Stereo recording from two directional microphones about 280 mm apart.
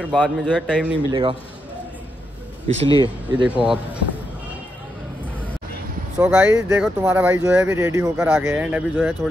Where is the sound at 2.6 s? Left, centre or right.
Centre.